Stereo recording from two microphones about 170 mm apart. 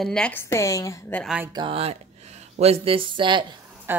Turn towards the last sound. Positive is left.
turn(degrees=-15)  # may be behind; listen again after turning